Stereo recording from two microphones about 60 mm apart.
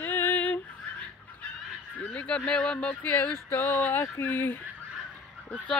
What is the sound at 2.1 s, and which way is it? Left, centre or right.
Speech, centre.